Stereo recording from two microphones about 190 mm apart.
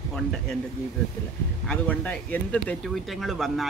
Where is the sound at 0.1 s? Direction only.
5° left (ahead or behind).